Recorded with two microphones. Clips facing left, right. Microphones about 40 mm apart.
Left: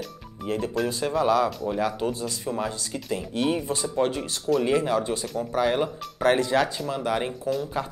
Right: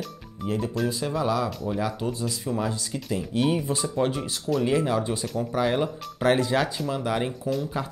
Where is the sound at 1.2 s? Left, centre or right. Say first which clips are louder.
Left 5 dB; left.